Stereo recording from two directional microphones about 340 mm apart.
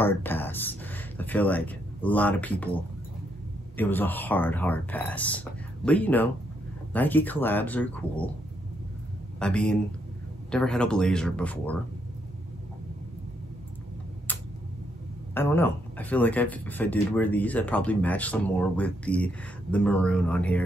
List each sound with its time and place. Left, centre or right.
0.0 s speech: centre
3.7 s speech: centre
9.4 s speech: centre
15.3 s speech: centre